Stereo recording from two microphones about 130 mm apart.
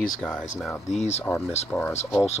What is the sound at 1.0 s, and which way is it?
Speech, 60° left (ahead or behind).